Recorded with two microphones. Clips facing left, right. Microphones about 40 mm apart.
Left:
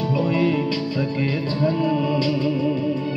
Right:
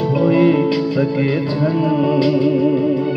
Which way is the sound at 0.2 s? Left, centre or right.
Centre.